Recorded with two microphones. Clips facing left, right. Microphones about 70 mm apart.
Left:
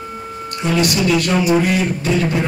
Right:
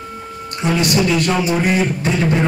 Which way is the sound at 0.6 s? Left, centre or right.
Right.